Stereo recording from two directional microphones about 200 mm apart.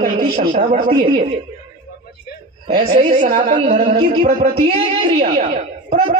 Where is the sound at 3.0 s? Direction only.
40° right (ahead or behind).